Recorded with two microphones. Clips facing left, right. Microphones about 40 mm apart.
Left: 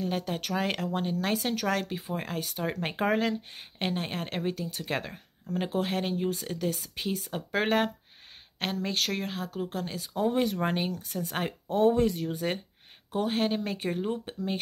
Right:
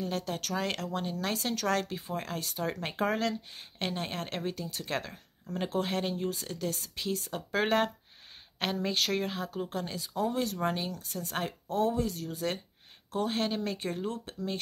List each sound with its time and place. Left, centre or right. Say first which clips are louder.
0.0 s speech: left 3 dB; centre
10.1 s speech: left 4 dB; left
12.3 s speech: left 3 dB; centre